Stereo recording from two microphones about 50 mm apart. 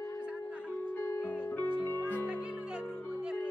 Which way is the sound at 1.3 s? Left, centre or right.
Left.